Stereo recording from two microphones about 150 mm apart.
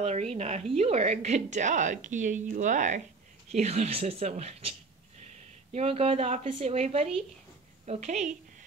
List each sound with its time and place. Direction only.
0.0 s a woman's voice: 45° right (ahead or behind)